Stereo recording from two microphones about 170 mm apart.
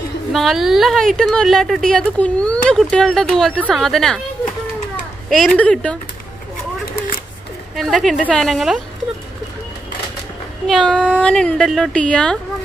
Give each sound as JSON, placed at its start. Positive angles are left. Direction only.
{"t": 0.3, "sound": "a woman's voice", "side_deg": 0}
{"t": 5.3, "sound": "a woman's voice", "side_deg": 5}
{"t": 7.7, "sound": "a woman's voice", "side_deg": 0}
{"t": 10.7, "sound": "a woman's voice", "side_deg": 5}